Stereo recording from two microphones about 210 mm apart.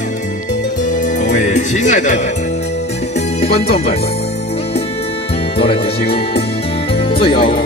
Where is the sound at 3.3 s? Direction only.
30° left (ahead or behind).